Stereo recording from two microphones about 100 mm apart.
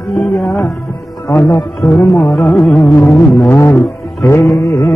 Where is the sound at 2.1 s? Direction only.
5° left (ahead or behind).